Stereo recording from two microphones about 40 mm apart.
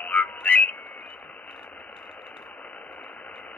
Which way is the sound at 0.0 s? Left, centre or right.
Left.